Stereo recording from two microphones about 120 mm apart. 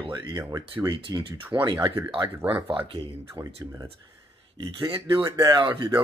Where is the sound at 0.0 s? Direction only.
35° right (ahead or behind).